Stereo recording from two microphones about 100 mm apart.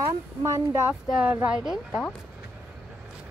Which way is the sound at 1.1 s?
10° right (ahead or behind).